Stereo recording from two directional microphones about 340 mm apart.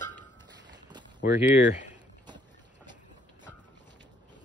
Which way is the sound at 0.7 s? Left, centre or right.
Centre.